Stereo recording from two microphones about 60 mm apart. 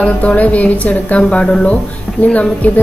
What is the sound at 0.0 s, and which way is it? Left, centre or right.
A woman's voice, left.